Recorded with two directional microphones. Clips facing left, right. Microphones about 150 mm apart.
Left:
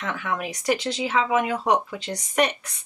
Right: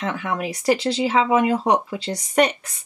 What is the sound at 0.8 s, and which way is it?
Speech, 30° right (ahead or behind).